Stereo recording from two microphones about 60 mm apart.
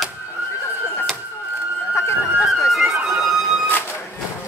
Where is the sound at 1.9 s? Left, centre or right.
Left.